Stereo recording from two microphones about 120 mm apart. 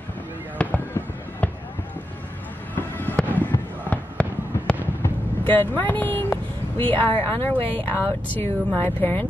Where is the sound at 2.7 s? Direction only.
15° left (ahead or behind).